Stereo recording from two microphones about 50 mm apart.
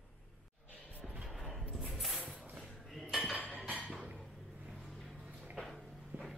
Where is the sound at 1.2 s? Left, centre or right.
Centre.